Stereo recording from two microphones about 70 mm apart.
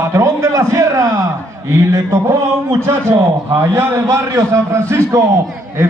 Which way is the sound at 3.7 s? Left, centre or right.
Right.